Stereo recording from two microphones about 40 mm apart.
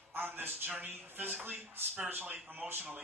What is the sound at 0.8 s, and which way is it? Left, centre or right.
Speech, right.